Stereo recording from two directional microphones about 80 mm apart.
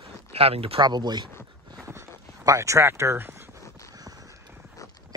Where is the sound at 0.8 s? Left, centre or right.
Right.